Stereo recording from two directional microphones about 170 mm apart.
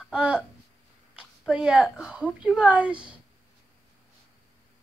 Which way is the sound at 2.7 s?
10° right (ahead or behind).